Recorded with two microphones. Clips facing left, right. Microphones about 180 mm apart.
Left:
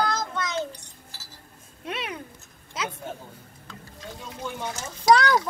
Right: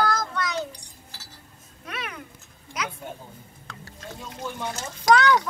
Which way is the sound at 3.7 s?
70° right (ahead or behind).